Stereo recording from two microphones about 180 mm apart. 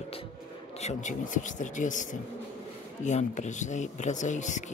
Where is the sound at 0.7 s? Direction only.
40° left (ahead or behind).